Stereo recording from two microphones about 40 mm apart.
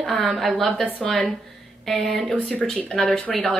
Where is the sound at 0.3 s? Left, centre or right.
Centre.